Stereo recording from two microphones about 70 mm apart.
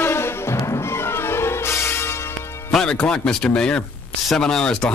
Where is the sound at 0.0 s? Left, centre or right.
Left.